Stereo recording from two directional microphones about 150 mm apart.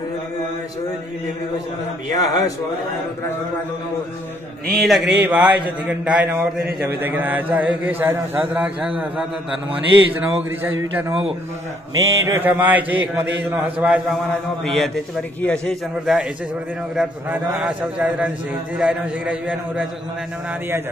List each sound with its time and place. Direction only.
2.1 s speech: 25° left (ahead or behind)
4.7 s a man's voice: centre (ahead or behind)
10.6 s a man's voice: 15° right (ahead or behind)